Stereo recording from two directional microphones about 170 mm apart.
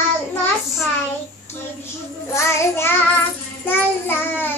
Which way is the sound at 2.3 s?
15° left (ahead or behind).